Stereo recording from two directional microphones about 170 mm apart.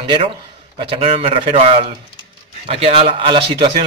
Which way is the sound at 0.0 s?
30° right (ahead or behind).